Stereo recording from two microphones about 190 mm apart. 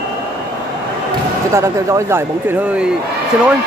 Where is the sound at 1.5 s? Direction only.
15° right (ahead or behind).